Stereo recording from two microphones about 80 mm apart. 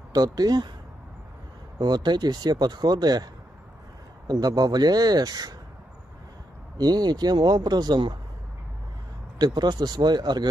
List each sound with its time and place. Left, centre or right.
0.1 s speech: right
1.8 s speech: right
4.3 s speech: right
6.8 s speech: right
9.4 s speech: right